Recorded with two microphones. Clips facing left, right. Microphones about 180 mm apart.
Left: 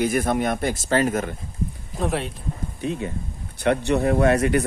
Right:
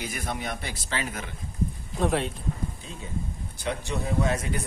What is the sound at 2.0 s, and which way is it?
Speech, centre (ahead or behind).